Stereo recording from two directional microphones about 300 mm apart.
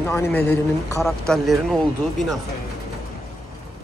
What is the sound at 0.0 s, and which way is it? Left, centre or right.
Speech, centre.